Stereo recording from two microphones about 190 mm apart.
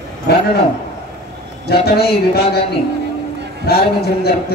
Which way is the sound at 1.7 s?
55° left (ahead or behind).